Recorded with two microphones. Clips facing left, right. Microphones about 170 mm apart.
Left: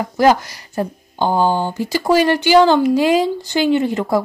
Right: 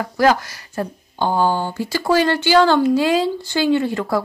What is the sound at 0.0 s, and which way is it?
Speech, 20° left (ahead or behind).